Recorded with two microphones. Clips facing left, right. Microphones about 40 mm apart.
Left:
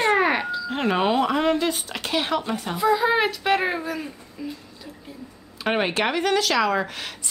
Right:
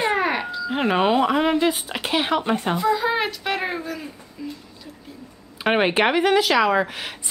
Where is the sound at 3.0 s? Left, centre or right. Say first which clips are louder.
Left 2 dB; centre.